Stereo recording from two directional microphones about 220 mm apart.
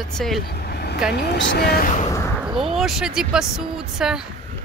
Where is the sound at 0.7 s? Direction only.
45° left (ahead or behind).